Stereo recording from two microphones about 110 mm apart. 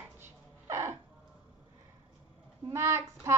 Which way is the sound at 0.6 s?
30° right (ahead or behind).